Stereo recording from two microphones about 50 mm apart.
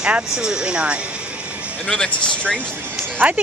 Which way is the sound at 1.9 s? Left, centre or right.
Centre.